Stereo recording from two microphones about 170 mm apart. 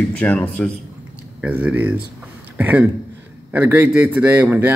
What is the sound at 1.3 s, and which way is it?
A man's voice, 10° right (ahead or behind).